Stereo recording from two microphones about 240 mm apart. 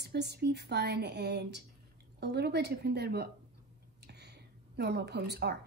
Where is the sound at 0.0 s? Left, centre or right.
Right.